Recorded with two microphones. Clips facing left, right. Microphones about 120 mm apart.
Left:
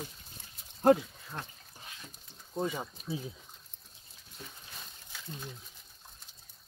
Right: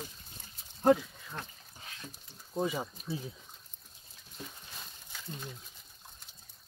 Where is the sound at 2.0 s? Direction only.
5° right (ahead or behind).